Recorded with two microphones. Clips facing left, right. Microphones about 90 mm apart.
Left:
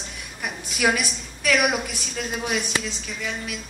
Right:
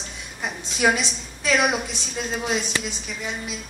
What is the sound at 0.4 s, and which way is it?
A woman's voice, 25° right (ahead or behind).